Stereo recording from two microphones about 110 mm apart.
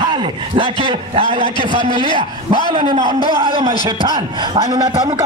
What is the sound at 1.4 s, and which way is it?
Speech, 45° left (ahead or behind).